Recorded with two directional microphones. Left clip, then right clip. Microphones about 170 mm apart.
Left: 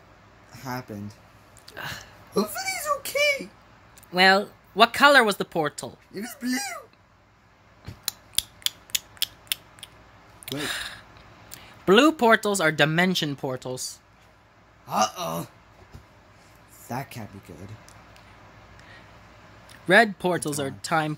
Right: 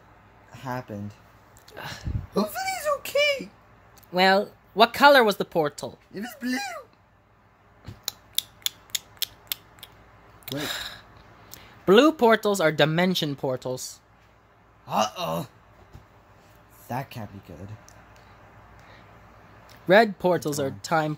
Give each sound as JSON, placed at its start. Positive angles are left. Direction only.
{"t": 0.5, "sound": "a sound", "side_deg": -40}
{"t": 1.7, "sound": "speech", "side_deg": -10}
{"t": 2.3, "sound": "a sound", "side_deg": -45}
{"t": 4.1, "sound": "speech", "side_deg": -10}
{"t": 6.1, "sound": "speech", "side_deg": -40}
{"t": 8.0, "sound": "scissors", "side_deg": -15}
{"t": 10.4, "sound": "gasp", "side_deg": -20}
{"t": 11.5, "sound": "speech", "side_deg": -10}
{"t": 14.9, "sound": "speech", "side_deg": -45}
{"t": 16.8, "sound": "speech", "side_deg": -45}
{"t": 19.9, "sound": "speech", "side_deg": -15}